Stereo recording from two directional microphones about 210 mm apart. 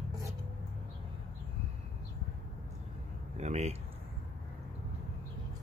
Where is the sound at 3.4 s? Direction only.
30° right (ahead or behind).